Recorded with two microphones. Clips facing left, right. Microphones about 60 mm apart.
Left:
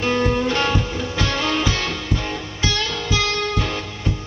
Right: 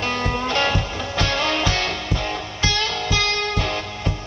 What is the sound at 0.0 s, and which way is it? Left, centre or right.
Music, centre.